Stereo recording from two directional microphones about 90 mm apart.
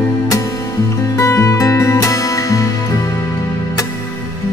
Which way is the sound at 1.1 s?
35° left (ahead or behind).